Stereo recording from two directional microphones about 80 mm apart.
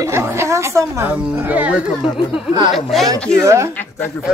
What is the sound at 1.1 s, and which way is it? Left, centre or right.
Speech, centre.